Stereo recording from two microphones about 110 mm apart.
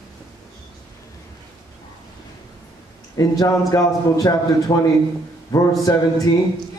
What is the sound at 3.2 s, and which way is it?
A man's voice, 35° left (ahead or behind).